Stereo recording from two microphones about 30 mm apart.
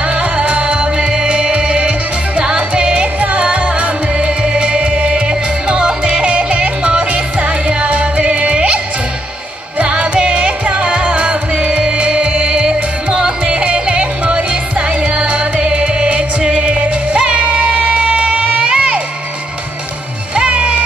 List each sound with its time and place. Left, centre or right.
0.0 s music: right
0.9 s music: right
4.3 s music: right
5.1 s music: right
10.1 s music: right
12.6 s music: right
13.5 s music: right
20.3 s music: right